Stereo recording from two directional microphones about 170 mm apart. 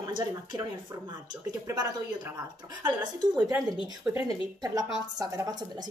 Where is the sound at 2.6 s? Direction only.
25° right (ahead or behind).